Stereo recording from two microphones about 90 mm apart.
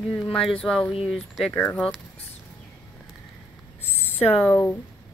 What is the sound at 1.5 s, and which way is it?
Speech, 20° left (ahead or behind).